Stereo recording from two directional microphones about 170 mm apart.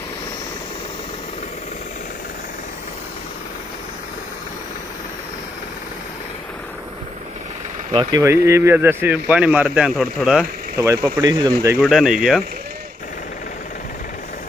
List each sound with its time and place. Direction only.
7.9 s speech: 25° right (ahead or behind); by 10.4 s centre (ahead or behind)
10.8 s speech: 20° right (ahead or behind)
11.8 s speech: centre (ahead or behind)